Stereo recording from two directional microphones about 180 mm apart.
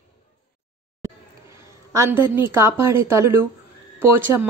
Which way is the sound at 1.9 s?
15° right (ahead or behind).